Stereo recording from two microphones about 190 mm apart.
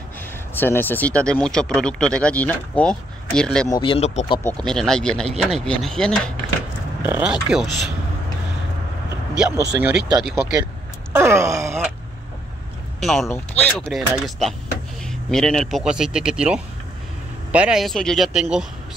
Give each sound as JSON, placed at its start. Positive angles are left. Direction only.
{"t": 0.6, "sound": "speech", "side_deg": 10}
{"t": 3.7, "sound": "speech", "side_deg": 25}
{"t": 4.6, "sound": "speech", "side_deg": 0}
{"t": 7.0, "sound": "speech", "side_deg": -10}
{"t": 9.8, "sound": "wail", "side_deg": -10}
{"t": 10.2, "sound": "speech", "side_deg": 0}
{"t": 11.1, "sound": "wail", "side_deg": -15}
{"t": 13.0, "sound": "speech", "side_deg": 0}